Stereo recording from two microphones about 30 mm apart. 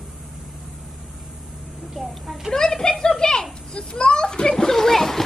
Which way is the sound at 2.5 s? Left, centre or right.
Centre.